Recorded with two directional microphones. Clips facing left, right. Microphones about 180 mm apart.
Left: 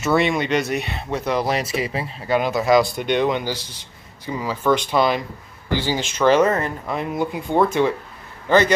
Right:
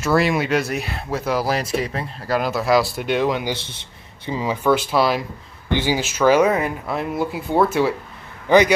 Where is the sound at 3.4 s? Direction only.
25° right (ahead or behind).